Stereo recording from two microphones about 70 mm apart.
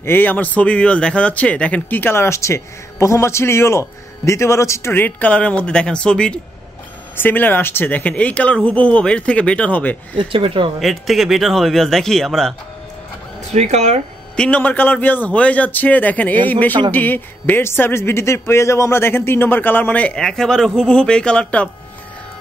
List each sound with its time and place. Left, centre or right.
0.0 s a man's voice: left
5.0 s speech: centre
7.2 s speech: left
10.8 s speech: centre
14.3 s a man's voice: centre
20.2 s speech: centre